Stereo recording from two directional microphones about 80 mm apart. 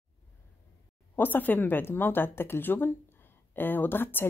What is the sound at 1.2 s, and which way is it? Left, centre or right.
A woman's voice, left.